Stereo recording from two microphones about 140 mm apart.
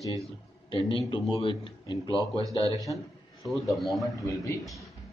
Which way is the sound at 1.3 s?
40° left (ahead or behind).